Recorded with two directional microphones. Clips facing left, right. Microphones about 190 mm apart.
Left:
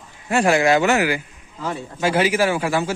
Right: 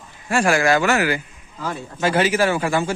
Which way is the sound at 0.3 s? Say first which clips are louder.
Left 1 dB; 20° left (ahead or behind).